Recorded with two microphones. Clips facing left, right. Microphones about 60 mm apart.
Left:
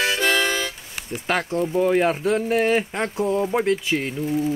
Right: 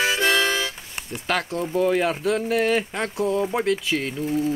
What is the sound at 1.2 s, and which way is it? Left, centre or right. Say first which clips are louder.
Speech: left 2 dB; centre.